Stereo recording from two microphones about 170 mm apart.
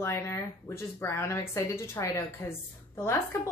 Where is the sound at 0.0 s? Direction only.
15° left (ahead or behind).